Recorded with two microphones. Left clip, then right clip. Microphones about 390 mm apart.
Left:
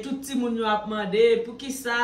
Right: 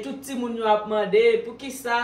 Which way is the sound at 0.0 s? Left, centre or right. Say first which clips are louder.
Left 2 dB; centre.